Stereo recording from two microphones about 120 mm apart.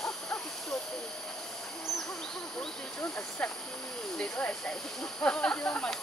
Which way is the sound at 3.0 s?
20° left (ahead or behind).